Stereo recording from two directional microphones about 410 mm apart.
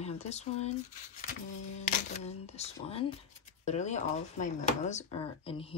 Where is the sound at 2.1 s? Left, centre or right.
Centre.